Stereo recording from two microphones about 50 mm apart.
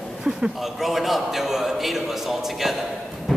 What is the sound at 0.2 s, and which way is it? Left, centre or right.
A man's voice, centre.